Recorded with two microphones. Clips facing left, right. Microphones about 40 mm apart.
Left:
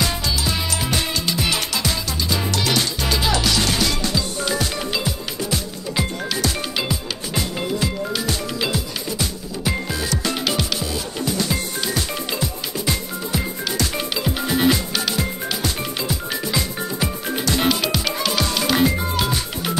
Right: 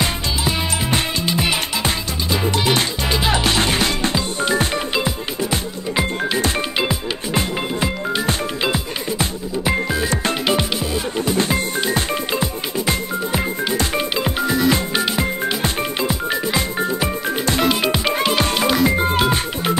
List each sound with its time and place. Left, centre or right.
0.0 s music: right